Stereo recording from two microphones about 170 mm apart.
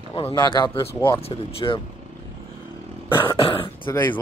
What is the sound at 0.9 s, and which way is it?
Speech, 15° left (ahead or behind).